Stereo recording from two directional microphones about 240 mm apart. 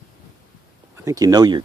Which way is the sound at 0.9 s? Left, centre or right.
Centre.